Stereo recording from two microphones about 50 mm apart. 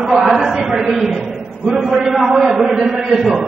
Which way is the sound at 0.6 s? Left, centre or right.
Centre.